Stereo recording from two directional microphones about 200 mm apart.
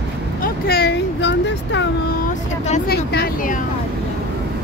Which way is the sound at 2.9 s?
50° left (ahead or behind).